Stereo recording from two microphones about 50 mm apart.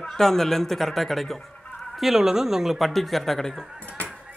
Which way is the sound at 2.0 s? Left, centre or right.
Centre.